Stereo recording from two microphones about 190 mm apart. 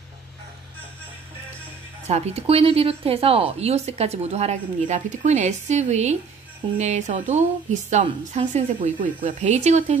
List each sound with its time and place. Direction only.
2.0 s a woman's voice: 35° right (ahead or behind)